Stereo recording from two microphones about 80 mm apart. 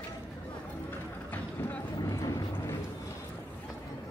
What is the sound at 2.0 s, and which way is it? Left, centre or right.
Vehicle, left.